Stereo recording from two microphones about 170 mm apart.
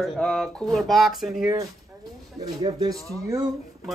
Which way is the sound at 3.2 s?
20° right (ahead or behind).